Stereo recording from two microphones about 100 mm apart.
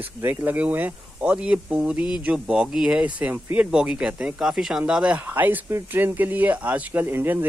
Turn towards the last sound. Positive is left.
turn(degrees=-20)  # may be behind; listen again after turning